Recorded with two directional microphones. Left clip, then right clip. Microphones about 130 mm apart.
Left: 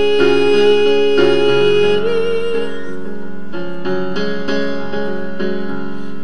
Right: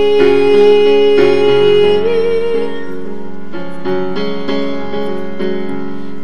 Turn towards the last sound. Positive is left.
turn(degrees=-15)  # may be behind; listen again after turning